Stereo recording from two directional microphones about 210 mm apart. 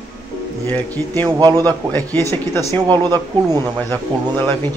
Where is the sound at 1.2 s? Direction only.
20° right (ahead or behind).